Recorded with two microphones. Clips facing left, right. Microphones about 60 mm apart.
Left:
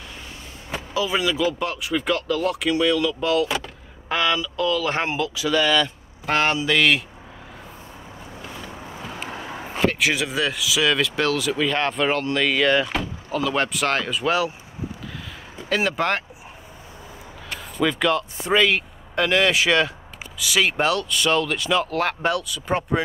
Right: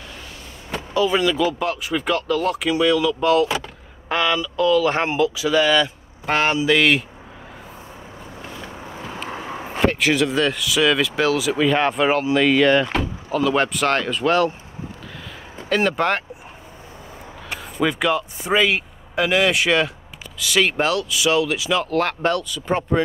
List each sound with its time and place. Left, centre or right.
0.7 s speech: centre
9.3 s a sound: right
9.8 s speech: centre
15.9 s speech: centre
17.7 s speech: centre